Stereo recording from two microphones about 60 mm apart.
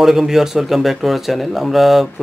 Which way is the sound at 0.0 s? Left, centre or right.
Centre.